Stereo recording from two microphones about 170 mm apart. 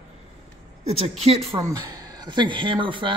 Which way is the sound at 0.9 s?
35° right (ahead or behind).